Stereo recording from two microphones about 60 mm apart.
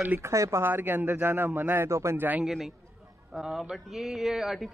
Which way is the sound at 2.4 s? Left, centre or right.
Centre.